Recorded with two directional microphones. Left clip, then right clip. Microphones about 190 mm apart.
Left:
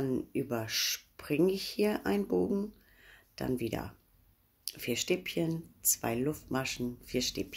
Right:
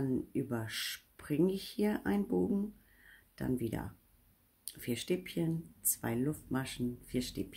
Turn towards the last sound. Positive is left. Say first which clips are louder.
# left 5 dB
turn(degrees=-20)  # may be behind; listen again after turning